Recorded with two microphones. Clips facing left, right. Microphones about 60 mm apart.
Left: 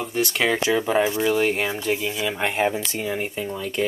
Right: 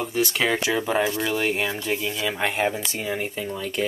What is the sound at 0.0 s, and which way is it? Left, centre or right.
Speech, centre.